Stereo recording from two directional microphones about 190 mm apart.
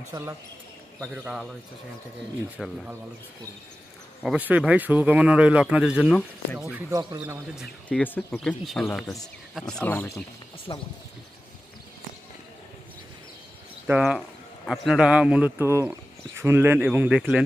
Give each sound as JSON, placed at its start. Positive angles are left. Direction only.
{"t": 0.1, "sound": "speech", "side_deg": -15}
{"t": 2.5, "sound": "speech", "side_deg": -10}
{"t": 4.2, "sound": "speech", "side_deg": -5}
{"t": 6.1, "sound": "speech", "side_deg": 5}
{"t": 6.7, "sound": "speech", "side_deg": -20}
{"t": 7.5, "sound": "speech", "side_deg": 5}
{"t": 10.7, "sound": "speech", "side_deg": 25}
{"t": 13.8, "sound": "speech", "side_deg": -5}